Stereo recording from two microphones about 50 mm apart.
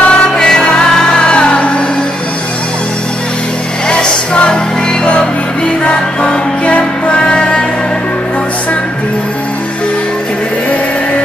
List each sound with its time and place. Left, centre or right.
0.0 s music: centre
3.9 s music: centre
5.9 s music: left